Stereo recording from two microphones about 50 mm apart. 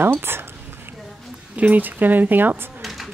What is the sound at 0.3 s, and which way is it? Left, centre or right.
Speech, right.